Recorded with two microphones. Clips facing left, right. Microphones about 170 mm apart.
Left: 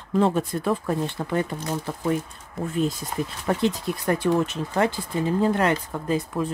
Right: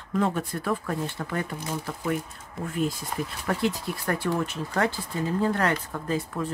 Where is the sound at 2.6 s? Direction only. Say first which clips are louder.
Left 4 dB; centre (ahead or behind).